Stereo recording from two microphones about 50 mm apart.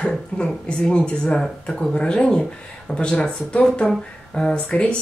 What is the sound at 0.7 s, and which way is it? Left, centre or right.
Speech, centre.